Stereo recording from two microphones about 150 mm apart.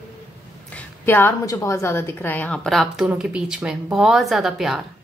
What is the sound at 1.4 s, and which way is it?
A woman's voice, 20° left (ahead or behind).